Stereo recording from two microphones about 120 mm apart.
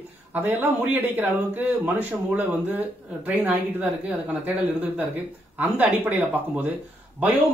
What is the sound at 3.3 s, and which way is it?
Speech, 15° right (ahead or behind).